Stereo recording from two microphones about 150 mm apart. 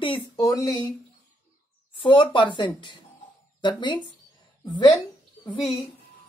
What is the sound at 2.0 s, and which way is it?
Speech, 35° left (ahead or behind).